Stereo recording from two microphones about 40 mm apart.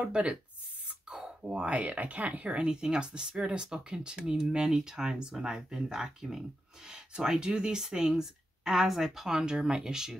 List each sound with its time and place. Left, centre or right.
0.0 s speech: right
0.8 s a sound: right
1.7 s speech: right; by 10.1 s centre